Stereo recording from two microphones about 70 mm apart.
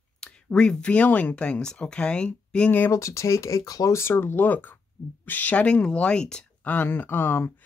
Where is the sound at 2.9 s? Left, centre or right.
Left.